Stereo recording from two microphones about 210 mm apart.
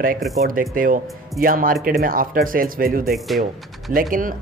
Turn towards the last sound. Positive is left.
turn(degrees=-40)  # may be behind; listen again after turning